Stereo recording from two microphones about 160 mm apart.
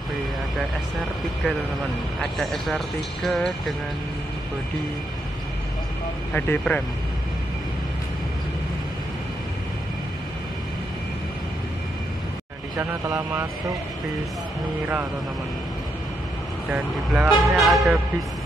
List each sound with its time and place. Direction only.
2.3 s speech: centre (ahead or behind)
6.3 s speech: 10° left (ahead or behind)
12.7 s speech: 15° right (ahead or behind)
16.6 s speech: 10° right (ahead or behind)